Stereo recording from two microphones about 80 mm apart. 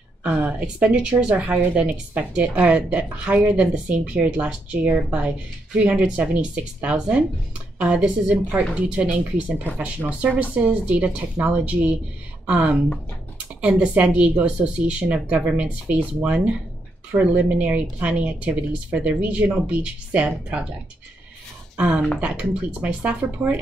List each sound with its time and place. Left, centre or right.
0.2 s speech: centre
21.7 s speech: centre